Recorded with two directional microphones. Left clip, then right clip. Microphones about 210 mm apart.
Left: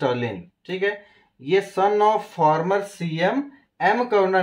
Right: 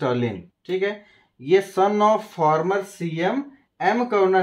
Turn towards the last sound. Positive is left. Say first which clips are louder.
# even
turn(degrees=-15)  # may be behind; listen again after turning